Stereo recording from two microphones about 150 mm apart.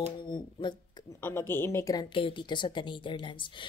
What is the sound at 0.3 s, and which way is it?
Speech, 30° left (ahead or behind).